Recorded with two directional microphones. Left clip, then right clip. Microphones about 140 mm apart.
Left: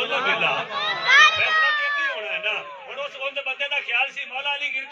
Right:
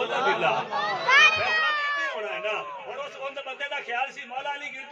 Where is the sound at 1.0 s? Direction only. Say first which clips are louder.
Left 4 dB; 20° right (ahead or behind).